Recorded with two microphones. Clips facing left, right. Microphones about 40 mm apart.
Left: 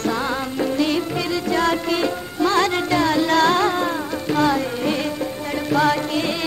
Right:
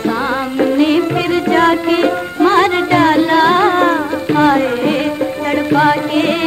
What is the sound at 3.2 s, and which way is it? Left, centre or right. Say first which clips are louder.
Music: right 6 dB; right.